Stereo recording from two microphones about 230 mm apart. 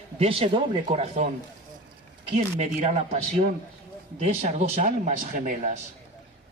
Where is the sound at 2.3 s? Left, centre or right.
Right.